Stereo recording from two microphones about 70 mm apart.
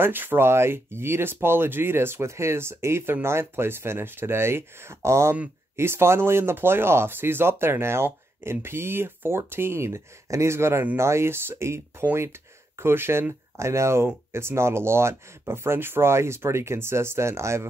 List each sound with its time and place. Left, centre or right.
0.0 s speech: right